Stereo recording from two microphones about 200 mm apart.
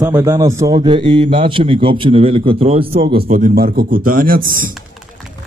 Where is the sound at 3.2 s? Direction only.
45° right (ahead or behind).